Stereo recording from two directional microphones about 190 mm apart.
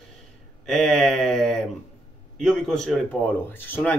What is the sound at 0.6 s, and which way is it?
Speech, centre (ahead or behind).